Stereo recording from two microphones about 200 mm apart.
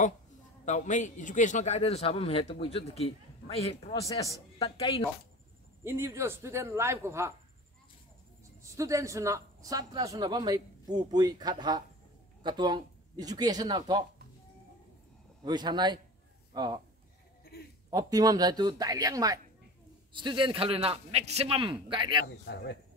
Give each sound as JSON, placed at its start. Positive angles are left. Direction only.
{"t": 0.7, "sound": "a man's voice", "side_deg": 40}
{"t": 4.0, "sound": "speech", "side_deg": 15}
{"t": 4.6, "sound": "a woman's voice", "side_deg": 30}
{"t": 5.9, "sound": "a man's voice", "side_deg": -15}
{"t": 8.6, "sound": "speech", "side_deg": -15}
{"t": 15.4, "sound": "speech", "side_deg": -20}
{"t": 17.8, "sound": "speech", "side_deg": -20}
{"t": 22.2, "sound": "speech", "side_deg": 55}